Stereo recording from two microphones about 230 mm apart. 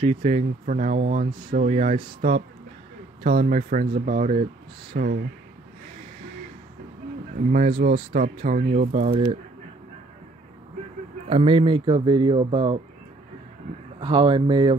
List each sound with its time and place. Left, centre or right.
0.0 s speech: right
7.8 s speech: right
11.2 s speech: right
13.9 s speech: centre